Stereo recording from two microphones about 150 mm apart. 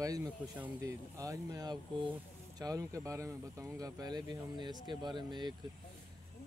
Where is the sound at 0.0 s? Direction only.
25° right (ahead or behind).